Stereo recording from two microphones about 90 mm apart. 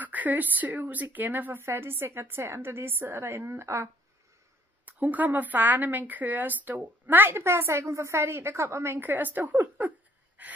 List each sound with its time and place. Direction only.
0.0 s a woman's voice: 20° right (ahead or behind)
4.8 s a woman's voice: 20° right (ahead or behind)